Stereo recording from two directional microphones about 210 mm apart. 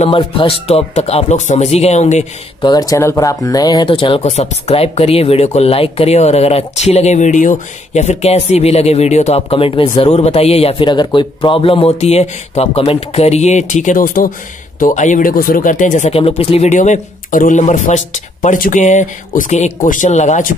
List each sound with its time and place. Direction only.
0.0 s speech: 25° left (ahead or behind)
2.6 s speech: 20° left (ahead or behind); by 20.4 s 35° left (ahead or behind)